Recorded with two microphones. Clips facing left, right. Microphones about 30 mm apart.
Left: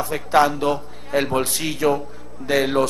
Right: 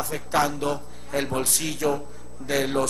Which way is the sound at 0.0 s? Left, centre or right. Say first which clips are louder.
Left 7 dB; left.